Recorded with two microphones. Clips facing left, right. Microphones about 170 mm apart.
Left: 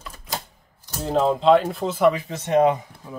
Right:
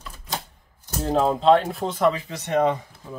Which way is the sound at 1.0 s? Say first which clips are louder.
Left 1 dB; centre (ahead or behind).